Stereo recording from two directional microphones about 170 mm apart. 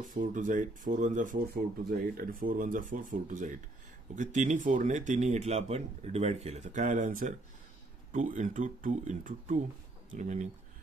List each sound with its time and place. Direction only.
0.0 s speech: 50° right (ahead or behind)